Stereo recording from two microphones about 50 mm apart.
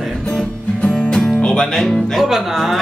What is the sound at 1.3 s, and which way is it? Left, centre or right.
Speech, centre.